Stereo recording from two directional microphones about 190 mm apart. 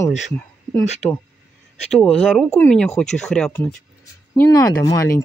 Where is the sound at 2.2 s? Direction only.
Centre (ahead or behind).